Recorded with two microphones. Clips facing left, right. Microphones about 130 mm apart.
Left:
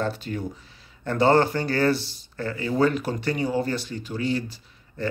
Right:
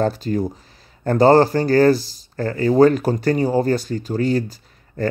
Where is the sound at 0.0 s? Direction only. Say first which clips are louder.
Right 8 dB; 40° right (ahead or behind).